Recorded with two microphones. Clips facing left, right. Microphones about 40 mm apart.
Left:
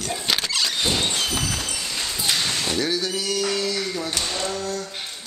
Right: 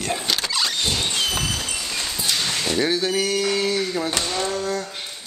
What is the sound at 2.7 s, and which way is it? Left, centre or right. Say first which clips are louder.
Speech: right 3 dB; right.